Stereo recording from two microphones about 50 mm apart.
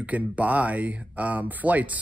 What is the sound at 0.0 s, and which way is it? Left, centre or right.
Speech, right.